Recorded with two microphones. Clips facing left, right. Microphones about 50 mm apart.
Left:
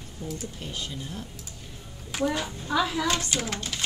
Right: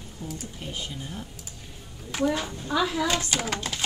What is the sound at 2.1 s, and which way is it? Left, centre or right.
A child's voice, centre.